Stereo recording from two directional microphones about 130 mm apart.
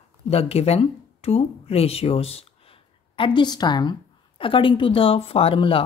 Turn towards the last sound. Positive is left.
turn(degrees=45)  # may be behind; listen again after turning